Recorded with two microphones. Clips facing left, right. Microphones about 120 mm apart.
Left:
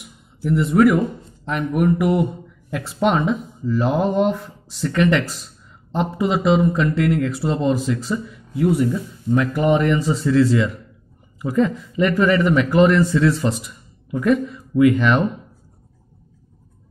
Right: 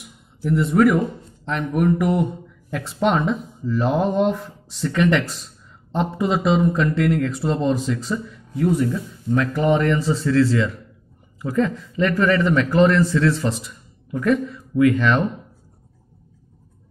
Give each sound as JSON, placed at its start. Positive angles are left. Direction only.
{"t": 0.4, "sound": "speech", "side_deg": 0}